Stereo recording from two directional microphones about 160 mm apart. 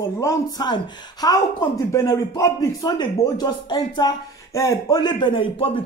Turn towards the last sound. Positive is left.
turn(degrees=35)  # may be behind; listen again after turning